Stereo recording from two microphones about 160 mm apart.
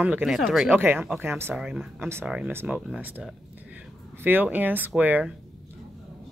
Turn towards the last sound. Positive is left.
turn(degrees=-10)  # may be behind; listen again after turning